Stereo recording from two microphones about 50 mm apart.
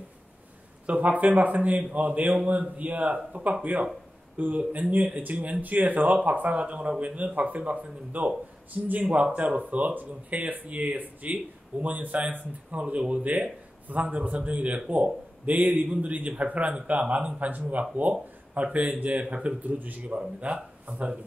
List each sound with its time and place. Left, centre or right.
0.8 s speech: right
9.0 s speech: right
19.6 s speech: right
20.2 s speech: right